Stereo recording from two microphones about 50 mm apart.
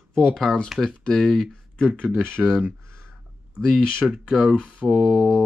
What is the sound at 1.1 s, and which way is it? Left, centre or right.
Mantra, centre.